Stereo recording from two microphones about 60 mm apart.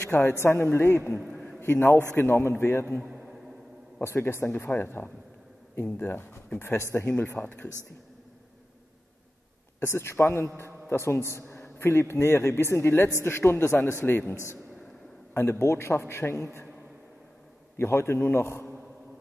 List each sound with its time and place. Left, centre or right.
0.1 s a man's voice: left
4.0 s a man's voice: left
7.1 s speech: left
9.8 s a man's voice: left
15.6 s a man's voice: left
17.7 s a man's voice: left